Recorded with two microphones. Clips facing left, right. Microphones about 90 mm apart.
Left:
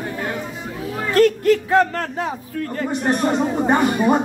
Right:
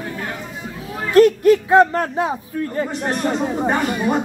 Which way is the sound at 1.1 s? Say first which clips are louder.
Right 3 dB; 20° right (ahead or behind).